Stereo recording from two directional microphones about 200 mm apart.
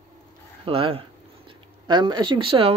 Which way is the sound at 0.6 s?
25° right (ahead or behind).